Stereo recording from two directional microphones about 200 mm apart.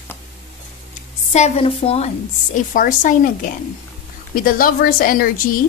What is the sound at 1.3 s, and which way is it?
Speech, 30° left (ahead or behind).